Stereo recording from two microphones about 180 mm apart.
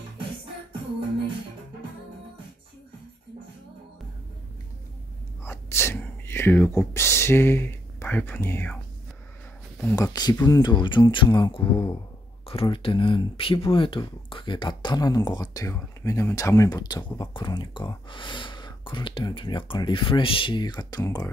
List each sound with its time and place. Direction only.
5.4 s sneeze: 15° left (ahead or behind)
9.8 s speech: 15° left (ahead or behind)